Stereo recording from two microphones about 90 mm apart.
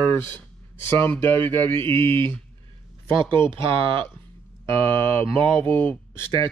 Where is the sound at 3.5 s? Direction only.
70° right (ahead or behind).